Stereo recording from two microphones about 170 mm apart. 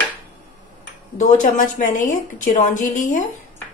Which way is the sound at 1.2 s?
45° left (ahead or behind).